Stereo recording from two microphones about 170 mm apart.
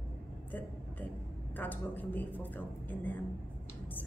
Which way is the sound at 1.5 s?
10° left (ahead or behind).